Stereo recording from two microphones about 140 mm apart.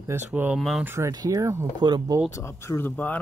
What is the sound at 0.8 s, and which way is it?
Speech, 20° right (ahead or behind).